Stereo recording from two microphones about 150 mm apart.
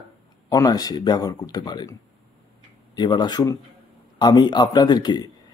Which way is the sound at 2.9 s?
30° left (ahead or behind).